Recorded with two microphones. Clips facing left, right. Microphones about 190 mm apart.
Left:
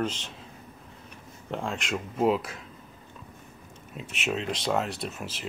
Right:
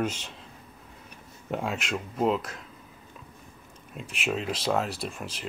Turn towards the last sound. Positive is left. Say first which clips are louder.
# even
turn(degrees=5)  # may be behind; listen again after turning